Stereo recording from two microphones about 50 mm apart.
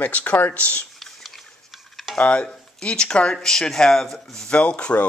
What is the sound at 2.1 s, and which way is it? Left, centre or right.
Speech, left.